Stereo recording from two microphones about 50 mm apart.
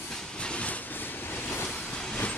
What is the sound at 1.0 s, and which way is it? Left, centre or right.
Vehicle, left.